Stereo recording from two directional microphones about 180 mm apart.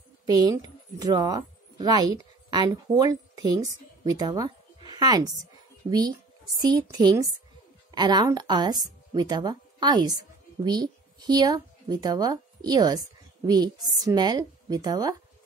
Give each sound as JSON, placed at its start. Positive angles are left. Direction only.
{"t": 0.4, "sound": "speech", "side_deg": -20}
{"t": 4.0, "sound": "a sound", "side_deg": -20}
{"t": 5.9, "sound": "a woman's voice", "side_deg": -20}